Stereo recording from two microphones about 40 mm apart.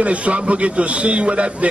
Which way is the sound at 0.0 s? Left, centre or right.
Right.